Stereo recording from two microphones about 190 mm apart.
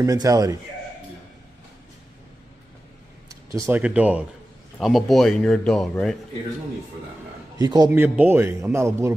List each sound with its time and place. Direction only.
0.0 s a man's voice: 20° right (ahead or behind)
3.5 s a man's voice: 10° right (ahead or behind)
7.5 s a man's voice: 20° right (ahead or behind)
7.9 s a man's voice: 10° right (ahead or behind)